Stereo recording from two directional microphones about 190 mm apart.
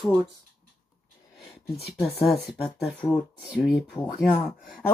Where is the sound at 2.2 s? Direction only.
Centre (ahead or behind).